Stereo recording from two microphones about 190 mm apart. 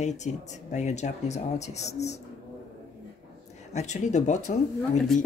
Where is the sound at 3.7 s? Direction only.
35° left (ahead or behind).